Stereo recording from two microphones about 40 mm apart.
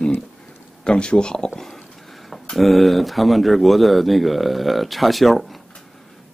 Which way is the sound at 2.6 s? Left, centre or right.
Centre.